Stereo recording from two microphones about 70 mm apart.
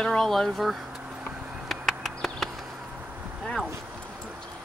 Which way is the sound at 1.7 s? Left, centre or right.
Centre.